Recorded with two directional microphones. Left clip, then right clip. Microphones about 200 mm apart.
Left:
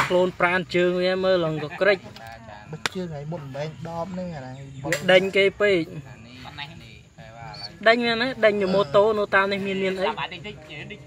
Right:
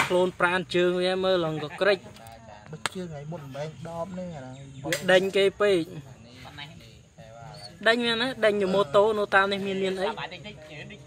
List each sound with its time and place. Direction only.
0.1 s a man's voice: centre (ahead or behind)
2.9 s speech: 15° left (ahead or behind)
5.0 s a man's voice: centre (ahead or behind)
7.8 s a man's voice: centre (ahead or behind)
10.0 s a sound: 55° right (ahead or behind)